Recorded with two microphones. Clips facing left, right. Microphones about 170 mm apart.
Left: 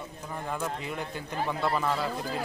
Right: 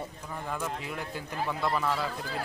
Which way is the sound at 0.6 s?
5° right (ahead or behind).